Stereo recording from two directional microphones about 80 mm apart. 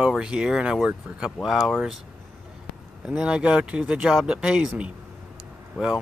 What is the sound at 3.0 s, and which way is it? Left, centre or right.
Speech, centre.